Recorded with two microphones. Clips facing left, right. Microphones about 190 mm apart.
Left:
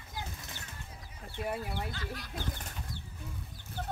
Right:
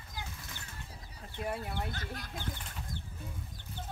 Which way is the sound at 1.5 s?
5° left (ahead or behind).